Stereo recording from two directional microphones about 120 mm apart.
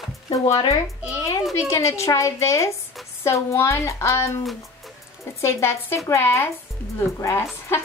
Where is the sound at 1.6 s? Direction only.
25° left (ahead or behind).